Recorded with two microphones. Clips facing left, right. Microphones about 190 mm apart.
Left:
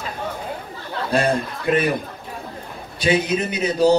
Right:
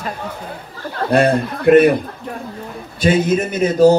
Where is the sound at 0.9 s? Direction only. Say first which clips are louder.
Right 5 dB; 60° right (ahead or behind).